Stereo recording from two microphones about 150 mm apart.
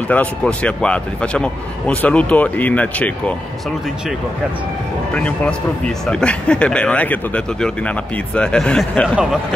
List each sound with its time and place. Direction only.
0.1 s speech: 10° left (ahead or behind)
5.1 s speech: 10° left (ahead or behind)